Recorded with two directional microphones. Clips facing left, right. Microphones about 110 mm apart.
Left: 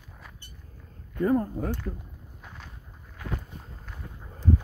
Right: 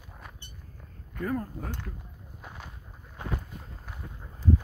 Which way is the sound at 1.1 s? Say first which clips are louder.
Left 7 dB; 25° left (ahead or behind).